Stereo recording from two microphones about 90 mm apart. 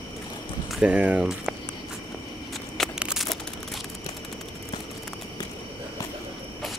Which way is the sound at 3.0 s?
10° right (ahead or behind).